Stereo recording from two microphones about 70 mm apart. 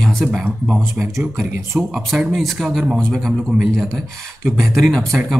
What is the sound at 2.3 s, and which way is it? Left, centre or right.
Speech, centre.